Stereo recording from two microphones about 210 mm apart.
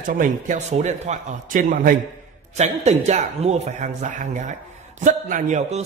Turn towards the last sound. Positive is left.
turn(degrees=-35)  # may be behind; listen again after turning